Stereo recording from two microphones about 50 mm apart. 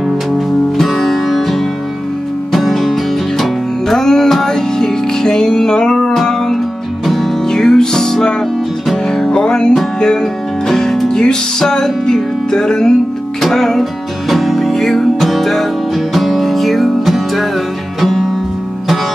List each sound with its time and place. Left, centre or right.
0.7 s music: centre
10.7 s music: centre